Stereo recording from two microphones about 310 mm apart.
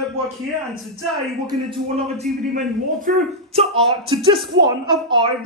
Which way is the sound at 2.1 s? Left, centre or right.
Right.